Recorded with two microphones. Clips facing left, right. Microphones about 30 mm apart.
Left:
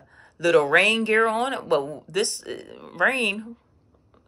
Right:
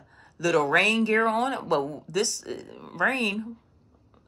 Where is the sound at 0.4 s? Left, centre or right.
Left.